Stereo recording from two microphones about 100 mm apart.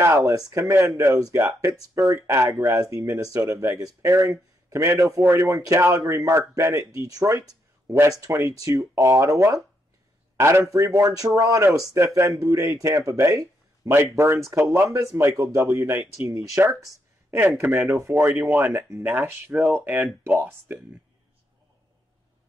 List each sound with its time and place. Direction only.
0.0 s a man's voice: 30° right (ahead or behind)